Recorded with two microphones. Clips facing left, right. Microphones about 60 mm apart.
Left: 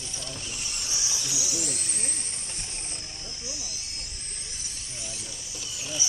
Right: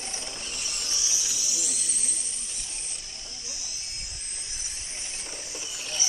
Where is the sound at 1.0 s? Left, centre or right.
Left.